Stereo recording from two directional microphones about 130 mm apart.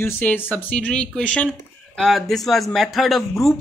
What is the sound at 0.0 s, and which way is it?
A man's voice, 15° left (ahead or behind).